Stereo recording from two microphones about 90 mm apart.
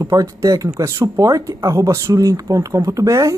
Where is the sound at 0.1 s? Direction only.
40° right (ahead or behind).